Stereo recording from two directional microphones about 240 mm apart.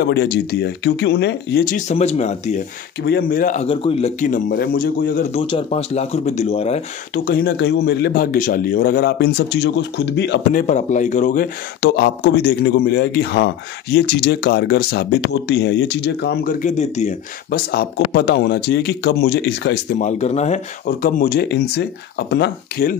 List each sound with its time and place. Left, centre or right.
0.0 s speech: left
3.0 s speech: left
5.4 s speech: left
7.2 s speech: left
10.7 s speech: left
11.8 s speech: left
20.0 s speech: left